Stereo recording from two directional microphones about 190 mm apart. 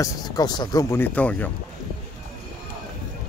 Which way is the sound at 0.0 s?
20° left (ahead or behind).